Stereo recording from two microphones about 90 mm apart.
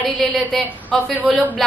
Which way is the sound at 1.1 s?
15° right (ahead or behind).